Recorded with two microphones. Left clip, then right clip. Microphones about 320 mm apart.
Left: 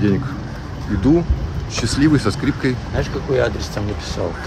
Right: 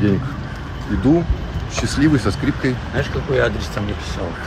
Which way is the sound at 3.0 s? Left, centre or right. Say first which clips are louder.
Even; left.